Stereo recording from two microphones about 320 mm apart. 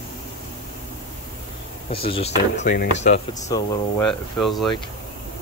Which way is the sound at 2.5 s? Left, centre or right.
Left.